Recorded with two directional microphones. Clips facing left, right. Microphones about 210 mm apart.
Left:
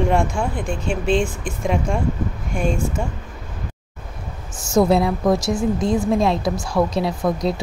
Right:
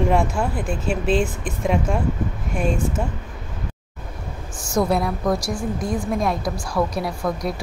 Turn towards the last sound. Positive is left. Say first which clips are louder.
# left 4 dB
turn(degrees=25)  # may be behind; listen again after turning